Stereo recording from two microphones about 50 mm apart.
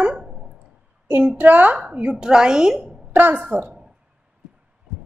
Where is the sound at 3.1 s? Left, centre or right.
Right.